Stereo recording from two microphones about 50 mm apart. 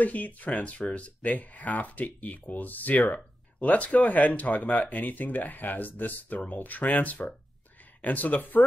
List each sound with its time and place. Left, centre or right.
0.0 s speech: left